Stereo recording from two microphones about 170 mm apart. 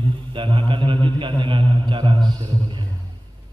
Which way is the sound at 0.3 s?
30° right (ahead or behind).